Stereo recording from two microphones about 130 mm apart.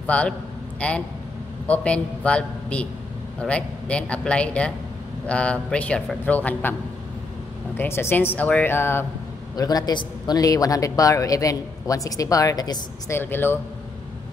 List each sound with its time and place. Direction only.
0.0 s a man's voice: 10° left (ahead or behind)
7.7 s a man's voice: 15° left (ahead or behind)
9.6 s a man's voice: 30° left (ahead or behind)
13.1 s a man's voice: 15° left (ahead or behind)